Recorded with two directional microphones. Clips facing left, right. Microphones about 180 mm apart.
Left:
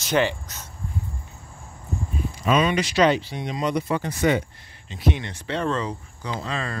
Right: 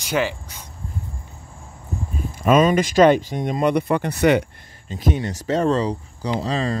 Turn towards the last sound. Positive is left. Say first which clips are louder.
# right 7 dB
turn(degrees=-35)  # may be behind; listen again after turning